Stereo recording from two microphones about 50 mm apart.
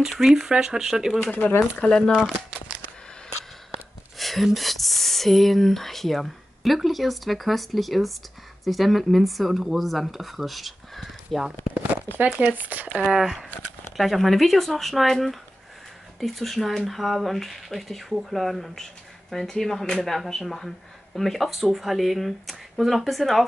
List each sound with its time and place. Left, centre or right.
0.1 s speech: centre
1.2 s speech: left
1.9 s speech: centre
4.2 s speech: centre
12.5 s speech: right
13.0 s speech: centre